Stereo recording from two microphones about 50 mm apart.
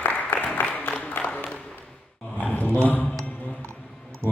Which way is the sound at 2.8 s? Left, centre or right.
Left.